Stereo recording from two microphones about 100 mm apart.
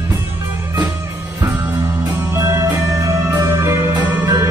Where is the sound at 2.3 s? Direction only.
30° right (ahead or behind).